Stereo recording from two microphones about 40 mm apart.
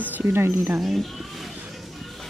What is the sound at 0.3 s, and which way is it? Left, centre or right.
Speech, right.